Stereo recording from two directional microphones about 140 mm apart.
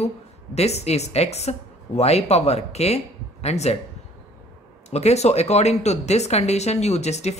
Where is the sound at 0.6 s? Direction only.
50° left (ahead or behind).